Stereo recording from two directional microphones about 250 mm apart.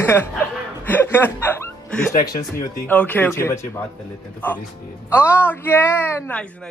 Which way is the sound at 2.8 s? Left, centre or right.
Centre.